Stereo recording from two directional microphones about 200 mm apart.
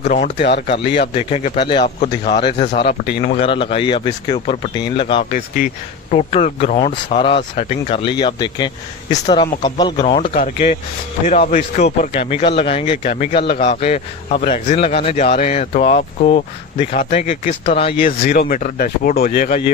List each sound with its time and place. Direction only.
0.0 s speech: 40° left (ahead or behind)
0.7 s speech: 25° left (ahead or behind)
2.7 s speech: 50° left (ahead or behind)
3.3 s speech: 25° left (ahead or behind)
5.3 s speech: 40° left (ahead or behind); by 10.1 s 20° left (ahead or behind)
11.2 s speech: 40° left (ahead or behind)
16.0 s speech: 40° left (ahead or behind)
18.0 s speech: 50° left (ahead or behind)